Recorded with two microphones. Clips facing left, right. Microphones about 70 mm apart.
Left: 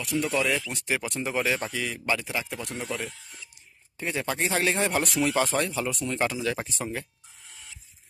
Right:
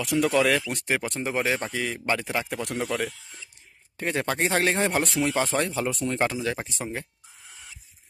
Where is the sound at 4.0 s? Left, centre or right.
Right.